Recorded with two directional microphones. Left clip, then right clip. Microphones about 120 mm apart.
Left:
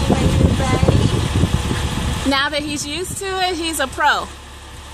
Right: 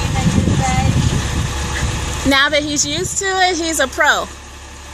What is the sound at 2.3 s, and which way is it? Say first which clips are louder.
A woman's voice: right 6 dB; 25° right (ahead or behind).